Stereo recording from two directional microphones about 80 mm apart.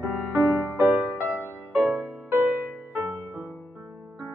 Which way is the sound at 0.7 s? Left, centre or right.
Right.